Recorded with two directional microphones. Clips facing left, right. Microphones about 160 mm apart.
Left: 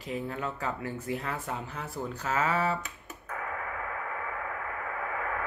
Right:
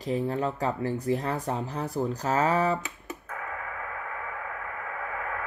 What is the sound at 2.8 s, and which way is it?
Computer keyboard, 90° right.